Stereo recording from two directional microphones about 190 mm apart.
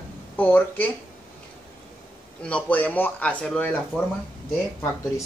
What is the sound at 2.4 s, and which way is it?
Speech, 5° left (ahead or behind).